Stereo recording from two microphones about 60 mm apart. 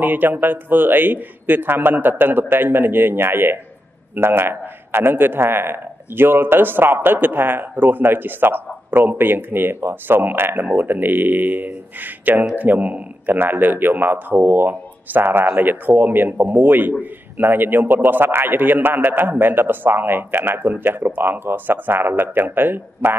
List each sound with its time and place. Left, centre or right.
0.0 s a man's voice: right